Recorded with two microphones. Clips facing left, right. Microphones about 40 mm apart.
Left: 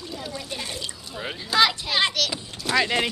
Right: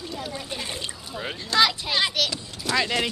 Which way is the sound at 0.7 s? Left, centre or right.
Right.